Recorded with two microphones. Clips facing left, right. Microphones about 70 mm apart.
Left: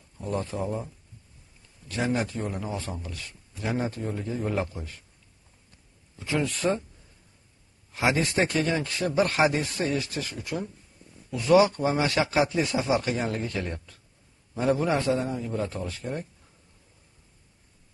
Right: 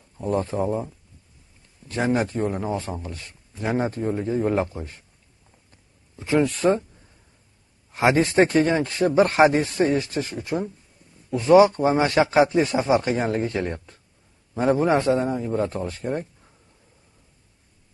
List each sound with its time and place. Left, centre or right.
0.2 s a man's voice: right
6.1 s speech: right
7.9 s a man's voice: right